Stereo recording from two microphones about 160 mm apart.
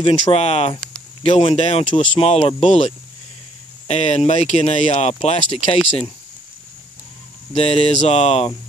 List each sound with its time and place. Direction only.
0.0 s speech: 40° left (ahead or behind)
7.5 s speech: 35° left (ahead or behind)